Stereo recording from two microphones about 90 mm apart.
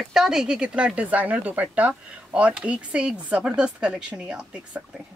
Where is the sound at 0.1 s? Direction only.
5° right (ahead or behind).